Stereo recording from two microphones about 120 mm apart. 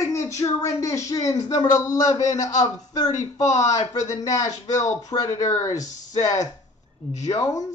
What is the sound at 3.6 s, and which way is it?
Speech, 30° left (ahead or behind).